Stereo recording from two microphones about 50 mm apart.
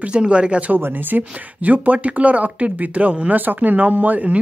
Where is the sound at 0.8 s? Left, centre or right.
Right.